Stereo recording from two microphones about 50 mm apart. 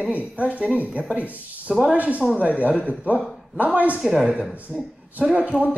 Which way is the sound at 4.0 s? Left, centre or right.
Centre.